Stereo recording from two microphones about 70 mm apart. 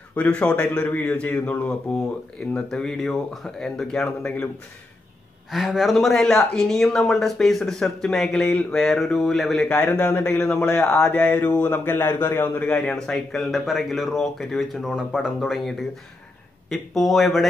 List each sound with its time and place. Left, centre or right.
0.1 s a man's voice: centre
5.5 s speech: centre
9.7 s a man's voice: centre
11.1 s a man's voice: left
12.7 s speech: centre
16.6 s speech: centre